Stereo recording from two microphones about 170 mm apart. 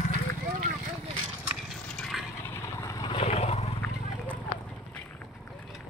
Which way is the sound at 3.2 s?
35° left (ahead or behind).